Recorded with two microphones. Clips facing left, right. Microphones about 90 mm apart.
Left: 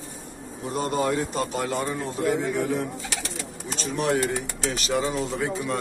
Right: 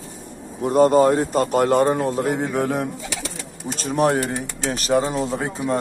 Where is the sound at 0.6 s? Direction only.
55° right (ahead or behind).